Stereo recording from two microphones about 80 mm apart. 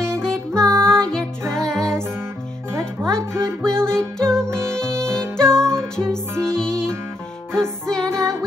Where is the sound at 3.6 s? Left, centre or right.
Centre.